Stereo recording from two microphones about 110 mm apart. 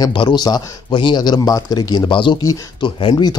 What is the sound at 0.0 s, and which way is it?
Speech, 45° left (ahead or behind).